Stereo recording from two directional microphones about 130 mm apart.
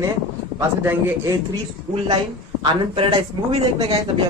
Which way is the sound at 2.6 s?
45° right (ahead or behind).